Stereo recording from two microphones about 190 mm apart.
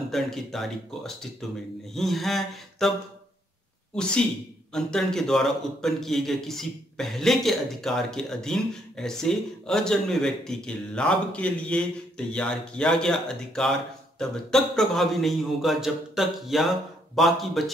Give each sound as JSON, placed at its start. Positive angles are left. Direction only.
{"t": 0.1, "sound": "a man's voice", "side_deg": 0}
{"t": 3.9, "sound": "a man's voice", "side_deg": 5}